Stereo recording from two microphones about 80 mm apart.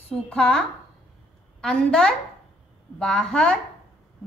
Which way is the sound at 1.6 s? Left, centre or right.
Centre.